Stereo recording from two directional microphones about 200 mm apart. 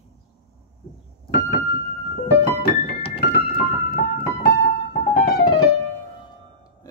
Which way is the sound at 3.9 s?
50° left (ahead or behind).